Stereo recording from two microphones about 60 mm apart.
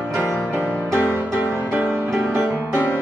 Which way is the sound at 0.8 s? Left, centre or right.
Right.